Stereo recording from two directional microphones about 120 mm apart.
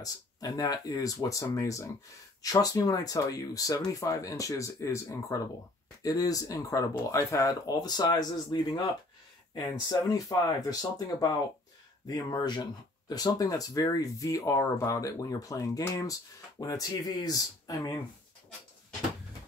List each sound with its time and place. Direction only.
0.0 s speech: 30° left (ahead or behind)